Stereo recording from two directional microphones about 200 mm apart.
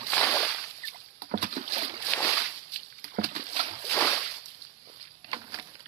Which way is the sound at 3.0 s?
40° right (ahead or behind).